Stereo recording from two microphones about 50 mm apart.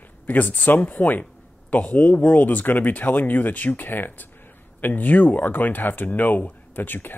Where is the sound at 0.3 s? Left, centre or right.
Left.